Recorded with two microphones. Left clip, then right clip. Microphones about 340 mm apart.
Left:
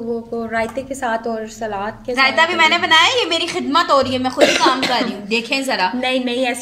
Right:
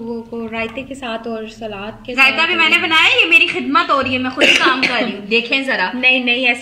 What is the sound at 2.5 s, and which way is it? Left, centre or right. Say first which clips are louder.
Speech: even; centre.